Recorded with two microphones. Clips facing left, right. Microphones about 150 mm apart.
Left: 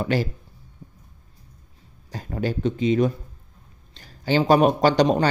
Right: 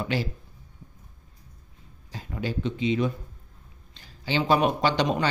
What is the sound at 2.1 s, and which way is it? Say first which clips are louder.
A man's voice: left 5 dB; 45° left (ahead or behind).